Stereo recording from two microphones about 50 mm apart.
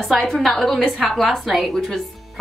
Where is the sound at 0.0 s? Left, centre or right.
Centre.